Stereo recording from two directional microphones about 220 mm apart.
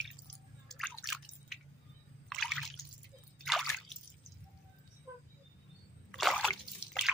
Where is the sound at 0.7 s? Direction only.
Centre (ahead or behind).